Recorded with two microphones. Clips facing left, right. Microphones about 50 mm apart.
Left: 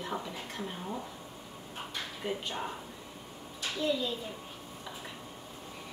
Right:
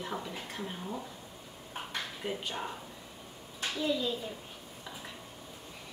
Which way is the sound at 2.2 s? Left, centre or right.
Centre.